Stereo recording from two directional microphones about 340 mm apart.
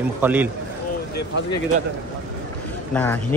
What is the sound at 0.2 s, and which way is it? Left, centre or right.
Speech, centre.